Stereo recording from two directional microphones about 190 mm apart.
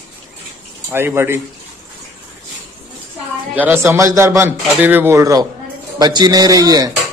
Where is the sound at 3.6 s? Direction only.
10° right (ahead or behind).